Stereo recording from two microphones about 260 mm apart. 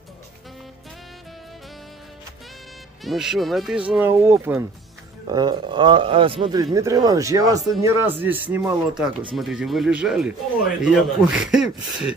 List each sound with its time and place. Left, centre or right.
3.0 s a man's voice: centre